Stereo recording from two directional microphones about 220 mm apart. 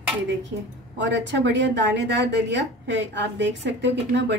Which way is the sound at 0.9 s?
50° right (ahead or behind).